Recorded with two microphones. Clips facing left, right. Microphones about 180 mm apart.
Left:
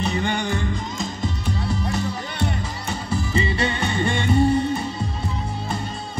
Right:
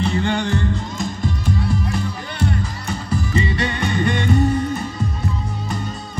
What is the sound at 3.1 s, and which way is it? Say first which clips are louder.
Music: right 2 dB; 25° left (ahead or behind).